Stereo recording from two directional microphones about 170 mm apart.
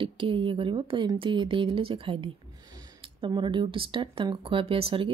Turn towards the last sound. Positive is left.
turn(degrees=-30)  # may be behind; listen again after turning